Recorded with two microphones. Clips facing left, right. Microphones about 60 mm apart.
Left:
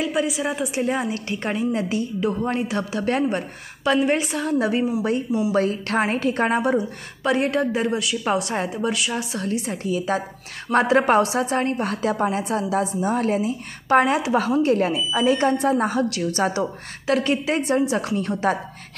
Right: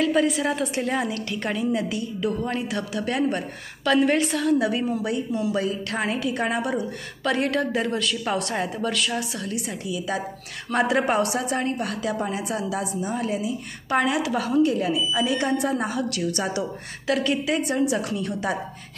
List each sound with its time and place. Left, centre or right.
0.0 s a woman's voice: centre; by 3.3 s left
3.3 s a woman's voice: left
5.5 s a woman's voice: left
8.0 s a woman's voice: centre
9.3 s a woman's voice: left